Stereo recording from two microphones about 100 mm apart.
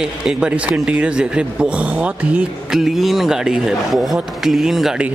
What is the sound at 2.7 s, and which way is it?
A man's voice, 5° right (ahead or behind).